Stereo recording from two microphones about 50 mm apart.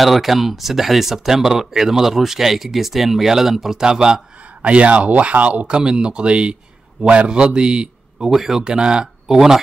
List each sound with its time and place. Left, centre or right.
0.0 s speech: centre